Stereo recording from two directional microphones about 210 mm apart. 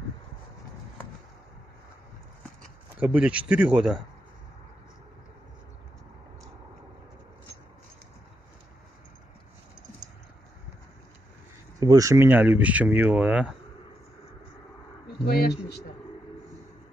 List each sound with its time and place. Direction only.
3.0 s speech: 5° right (ahead or behind)
11.8 s speech: 15° right (ahead or behind)
15.2 s speech: 45° left (ahead or behind)